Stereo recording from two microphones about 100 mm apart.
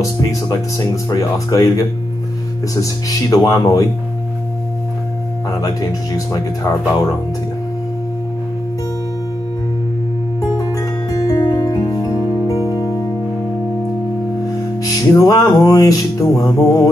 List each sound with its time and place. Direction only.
0.3 s music: 35° left (ahead or behind)
5.6 s music: 35° left (ahead or behind)
10.6 s music: 35° left (ahead or behind)
15.0 s music: 40° left (ahead or behind)